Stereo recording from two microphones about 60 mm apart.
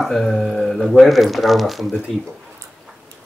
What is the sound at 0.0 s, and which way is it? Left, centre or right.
Speech, centre.